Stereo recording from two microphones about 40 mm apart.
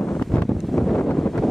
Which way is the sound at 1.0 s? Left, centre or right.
Left.